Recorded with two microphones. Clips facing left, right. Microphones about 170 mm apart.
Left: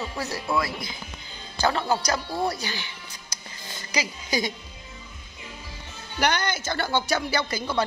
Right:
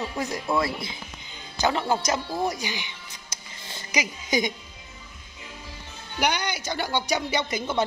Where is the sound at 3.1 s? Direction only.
25° right (ahead or behind).